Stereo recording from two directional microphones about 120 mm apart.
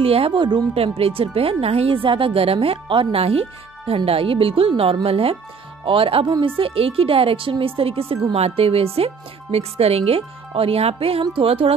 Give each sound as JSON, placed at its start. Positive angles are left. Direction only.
{"t": 0.0, "sound": "speech", "side_deg": -55}
{"t": 0.7, "sound": "speech", "side_deg": -55}